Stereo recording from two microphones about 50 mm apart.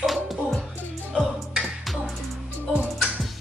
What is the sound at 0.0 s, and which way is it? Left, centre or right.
Music, centre.